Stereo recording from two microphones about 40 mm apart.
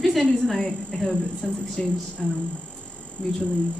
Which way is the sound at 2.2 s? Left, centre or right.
Centre.